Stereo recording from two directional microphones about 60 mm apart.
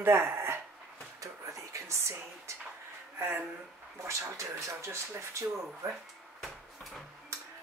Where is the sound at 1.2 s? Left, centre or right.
Right.